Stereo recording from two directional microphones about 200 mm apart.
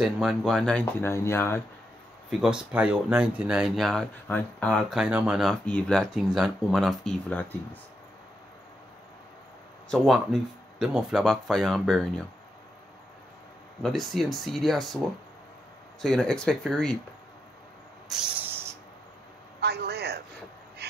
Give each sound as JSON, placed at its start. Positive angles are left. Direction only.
{"t": 0.0, "sound": "speech", "side_deg": 0}
{"t": 2.4, "sound": "speech", "side_deg": -5}
{"t": 9.8, "sound": "speech", "side_deg": 0}
{"t": 13.8, "sound": "speech", "side_deg": 0}
{"t": 18.1, "sound": "speech", "side_deg": 0}
{"t": 19.6, "sound": "a man's voice", "side_deg": -55}